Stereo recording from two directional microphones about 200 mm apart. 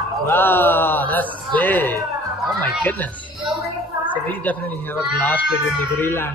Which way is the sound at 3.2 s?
5° right (ahead or behind).